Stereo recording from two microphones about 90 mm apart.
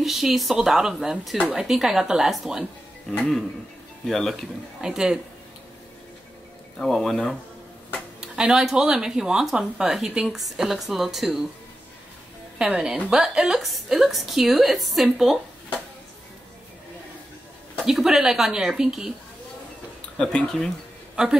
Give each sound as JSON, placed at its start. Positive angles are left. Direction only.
{"t": 0.0, "sound": "speech", "side_deg": 0}
{"t": 4.8, "sound": "a woman's voice", "side_deg": -5}
{"t": 6.8, "sound": "speech", "side_deg": 5}
{"t": 12.5, "sound": "a woman's voice", "side_deg": -10}
{"t": 17.8, "sound": "speech", "side_deg": -5}
{"t": 20.2, "sound": "speech", "side_deg": 10}